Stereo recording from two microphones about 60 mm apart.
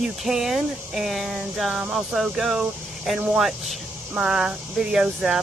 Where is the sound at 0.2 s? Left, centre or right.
Centre.